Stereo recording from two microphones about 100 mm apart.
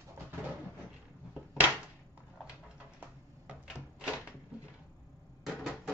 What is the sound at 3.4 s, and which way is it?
Cupboard open or close, 10° right (ahead or behind).